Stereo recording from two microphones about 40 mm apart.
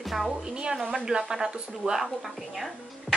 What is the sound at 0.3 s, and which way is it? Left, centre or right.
A woman's voice, centre.